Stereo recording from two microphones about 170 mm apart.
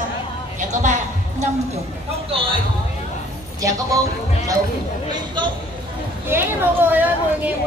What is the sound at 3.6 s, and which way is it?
Speech, 20° right (ahead or behind).